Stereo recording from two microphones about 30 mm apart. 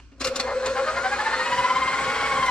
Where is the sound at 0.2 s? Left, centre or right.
Left.